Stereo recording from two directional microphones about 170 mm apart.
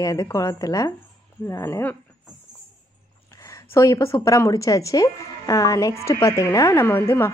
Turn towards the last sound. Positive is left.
turn(degrees=15)  # may be behind; listen again after turning